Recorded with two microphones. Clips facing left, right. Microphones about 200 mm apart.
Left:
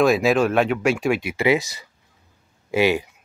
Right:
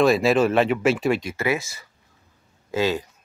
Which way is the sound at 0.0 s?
Centre (ahead or behind).